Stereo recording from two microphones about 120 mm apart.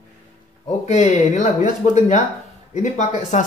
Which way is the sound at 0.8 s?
75° left (ahead or behind).